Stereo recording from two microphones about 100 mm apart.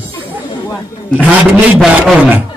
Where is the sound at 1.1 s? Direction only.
15° right (ahead or behind).